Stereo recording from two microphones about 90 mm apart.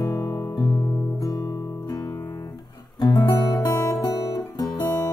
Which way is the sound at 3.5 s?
40° left (ahead or behind).